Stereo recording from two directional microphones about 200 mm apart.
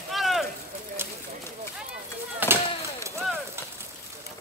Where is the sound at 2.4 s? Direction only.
10° right (ahead or behind).